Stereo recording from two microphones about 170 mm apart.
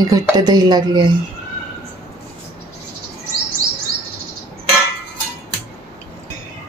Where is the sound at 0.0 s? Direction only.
20° right (ahead or behind).